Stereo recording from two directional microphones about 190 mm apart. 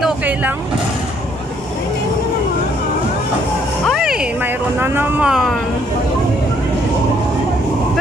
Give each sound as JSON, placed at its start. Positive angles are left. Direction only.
{"t": 0.0, "sound": "vehicle", "side_deg": -10}
{"t": 3.8, "sound": "a sound", "side_deg": 0}
{"t": 4.7, "sound": "speech", "side_deg": -10}